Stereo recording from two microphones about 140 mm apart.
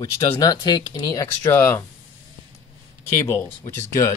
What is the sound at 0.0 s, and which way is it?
Speech, 25° left (ahead or behind).